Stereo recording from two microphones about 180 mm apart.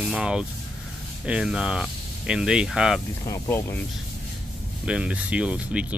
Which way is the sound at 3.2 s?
15° left (ahead or behind).